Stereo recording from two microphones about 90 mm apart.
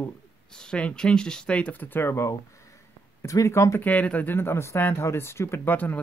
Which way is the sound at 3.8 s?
15° left (ahead or behind).